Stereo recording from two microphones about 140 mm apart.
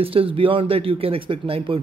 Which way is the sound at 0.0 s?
40° right (ahead or behind).